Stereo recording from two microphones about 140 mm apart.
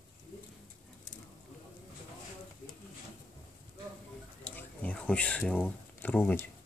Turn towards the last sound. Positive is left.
turn(degrees=15)  # may be behind; listen again after turning